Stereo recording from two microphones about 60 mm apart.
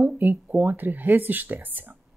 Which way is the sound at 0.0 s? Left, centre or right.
Right.